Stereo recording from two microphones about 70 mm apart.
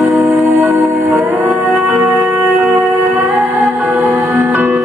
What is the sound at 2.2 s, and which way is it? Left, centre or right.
Music, right.